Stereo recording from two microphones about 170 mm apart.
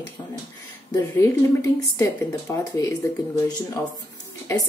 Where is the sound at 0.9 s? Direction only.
20° left (ahead or behind).